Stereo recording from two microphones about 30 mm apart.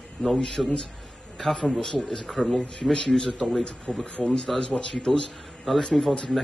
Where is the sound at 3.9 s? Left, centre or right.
Left.